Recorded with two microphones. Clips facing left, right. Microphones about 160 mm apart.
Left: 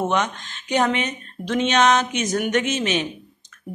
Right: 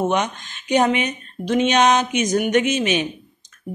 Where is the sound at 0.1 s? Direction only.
15° right (ahead or behind).